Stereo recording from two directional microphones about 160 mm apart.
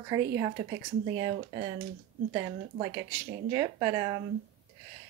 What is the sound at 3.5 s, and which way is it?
Speech, 20° right (ahead or behind).